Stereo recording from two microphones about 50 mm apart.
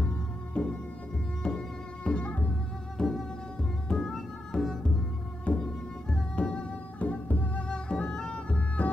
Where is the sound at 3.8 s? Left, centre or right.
Centre.